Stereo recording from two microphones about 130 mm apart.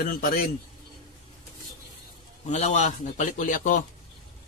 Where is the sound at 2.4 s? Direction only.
60° left (ahead or behind); by 3.8 s 80° left.